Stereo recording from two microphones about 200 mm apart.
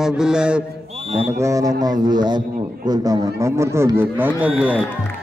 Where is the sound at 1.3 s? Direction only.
15° right (ahead or behind).